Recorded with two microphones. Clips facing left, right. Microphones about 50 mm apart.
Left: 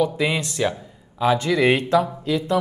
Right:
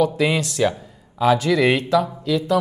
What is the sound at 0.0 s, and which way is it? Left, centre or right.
Speech, centre.